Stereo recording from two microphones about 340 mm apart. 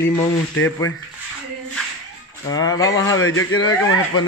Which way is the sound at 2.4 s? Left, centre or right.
Centre.